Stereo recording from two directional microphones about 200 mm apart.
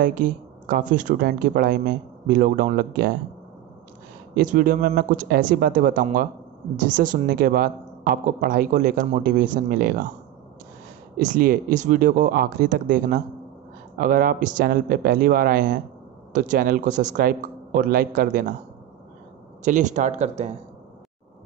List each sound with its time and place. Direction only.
0.0 s speech: 45° right (ahead or behind)
4.3 s speech: 45° right (ahead or behind)
11.1 s speech: 45° right (ahead or behind)
19.6 s speech: 40° right (ahead or behind)